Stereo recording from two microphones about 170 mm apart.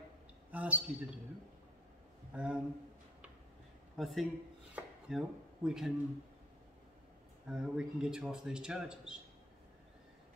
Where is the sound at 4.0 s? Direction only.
Centre (ahead or behind).